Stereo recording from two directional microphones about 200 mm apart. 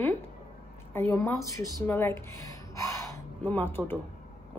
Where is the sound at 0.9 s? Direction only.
10° left (ahead or behind).